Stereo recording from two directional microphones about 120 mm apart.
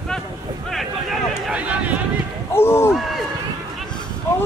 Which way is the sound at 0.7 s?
Centre (ahead or behind).